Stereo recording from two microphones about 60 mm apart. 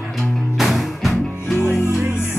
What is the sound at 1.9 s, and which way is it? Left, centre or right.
Music, right.